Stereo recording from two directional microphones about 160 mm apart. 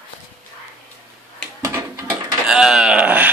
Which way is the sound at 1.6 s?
15° right (ahead or behind).